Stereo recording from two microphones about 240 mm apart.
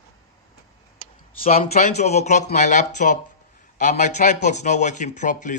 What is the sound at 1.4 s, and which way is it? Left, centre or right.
A man's voice, left.